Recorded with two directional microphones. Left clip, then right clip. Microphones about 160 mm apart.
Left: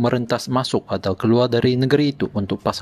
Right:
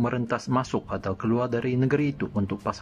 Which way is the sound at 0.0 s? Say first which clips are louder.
Left 7 dB; 30° left (ahead or behind).